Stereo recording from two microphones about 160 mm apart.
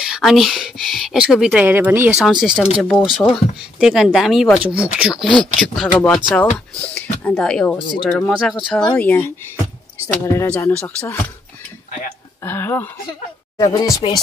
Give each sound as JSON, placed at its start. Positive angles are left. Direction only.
{"t": 0.1, "sound": "speech", "side_deg": 0}
{"t": 8.9, "sound": "speech", "side_deg": 10}
{"t": 12.4, "sound": "speech", "side_deg": 15}
{"t": 13.6, "sound": "speech", "side_deg": 25}